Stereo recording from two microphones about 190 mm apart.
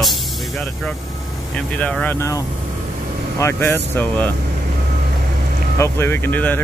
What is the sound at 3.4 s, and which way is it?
Speech, 15° left (ahead or behind).